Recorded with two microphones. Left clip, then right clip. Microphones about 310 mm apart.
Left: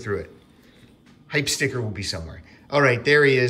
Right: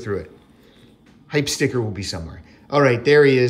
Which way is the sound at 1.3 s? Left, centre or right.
Centre.